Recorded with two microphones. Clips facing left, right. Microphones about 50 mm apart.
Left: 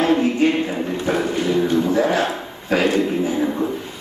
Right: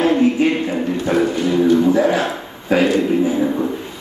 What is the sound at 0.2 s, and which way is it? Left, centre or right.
Music, centre.